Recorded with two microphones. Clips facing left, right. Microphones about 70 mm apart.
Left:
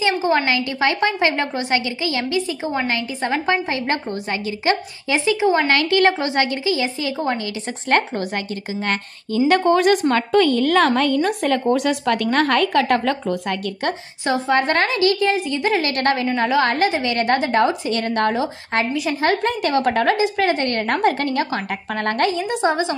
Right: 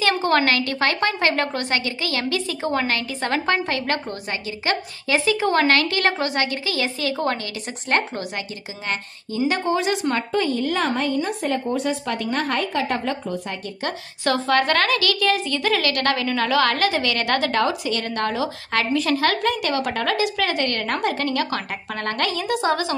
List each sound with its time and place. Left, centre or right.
0.2 s a woman's voice: centre
9.5 s speech: left
10.3 s a woman's voice: left
11.2 s speech: left
14.2 s a woman's voice: left
17.9 s a woman's voice: left
18.9 s a woman's voice: centre
19.2 s a woman's voice: left
22.3 s a woman's voice: left